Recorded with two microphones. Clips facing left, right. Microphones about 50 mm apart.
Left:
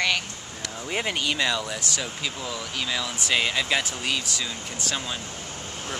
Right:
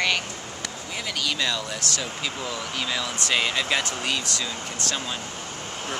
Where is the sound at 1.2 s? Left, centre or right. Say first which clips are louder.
Left 1 dB; centre.